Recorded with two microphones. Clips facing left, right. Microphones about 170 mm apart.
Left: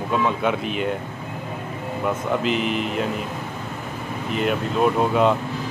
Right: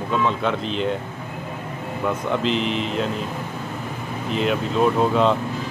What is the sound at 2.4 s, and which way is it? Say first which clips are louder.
Speech: even; 5° left (ahead or behind).